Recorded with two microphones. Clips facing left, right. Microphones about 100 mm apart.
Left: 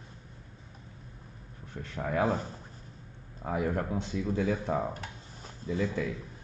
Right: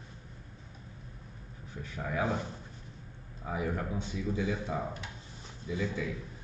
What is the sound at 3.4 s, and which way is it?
Speech, 55° left (ahead or behind).